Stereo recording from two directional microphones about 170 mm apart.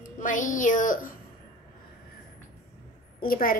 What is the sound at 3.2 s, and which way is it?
Speech, 55° left (ahead or behind).